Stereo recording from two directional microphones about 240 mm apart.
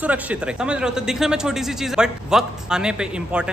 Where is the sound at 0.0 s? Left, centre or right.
Centre.